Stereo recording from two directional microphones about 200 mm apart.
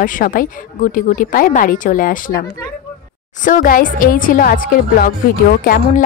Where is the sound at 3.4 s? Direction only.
40° left (ahead or behind).